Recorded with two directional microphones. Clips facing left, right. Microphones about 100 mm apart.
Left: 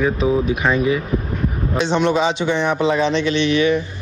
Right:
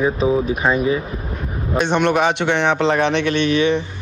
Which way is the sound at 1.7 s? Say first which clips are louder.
Right 1 dB; 55° right (ahead or behind).